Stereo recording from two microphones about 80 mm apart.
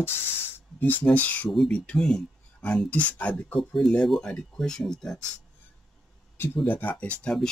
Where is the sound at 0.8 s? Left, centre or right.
Left.